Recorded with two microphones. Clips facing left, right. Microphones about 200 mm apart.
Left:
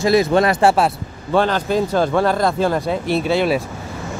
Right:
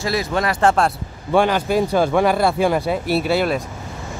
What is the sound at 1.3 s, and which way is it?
Speech, 10° right (ahead or behind).